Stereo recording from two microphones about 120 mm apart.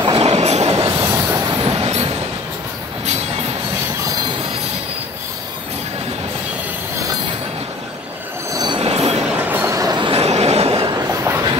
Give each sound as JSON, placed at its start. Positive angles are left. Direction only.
{"t": 0.0, "sound": "train", "side_deg": -55}
{"t": 0.7, "sound": "train", "side_deg": -30}
{"t": 1.6, "sound": "vehicle", "side_deg": -60}
{"t": 8.5, "sound": "train wheels squealing", "side_deg": -35}
{"t": 8.8, "sound": "train", "side_deg": -60}
{"t": 9.2, "sound": "train", "side_deg": -15}
{"t": 9.9, "sound": "train", "side_deg": -45}
{"t": 10.2, "sound": "train", "side_deg": -60}
{"t": 10.8, "sound": "train", "side_deg": -30}